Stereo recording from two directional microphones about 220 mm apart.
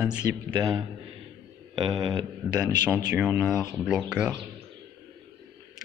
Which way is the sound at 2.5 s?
5° right (ahead or behind).